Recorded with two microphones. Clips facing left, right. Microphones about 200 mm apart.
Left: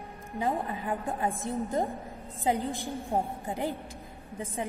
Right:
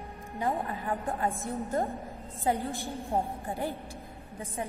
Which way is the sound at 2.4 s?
15° left (ahead or behind).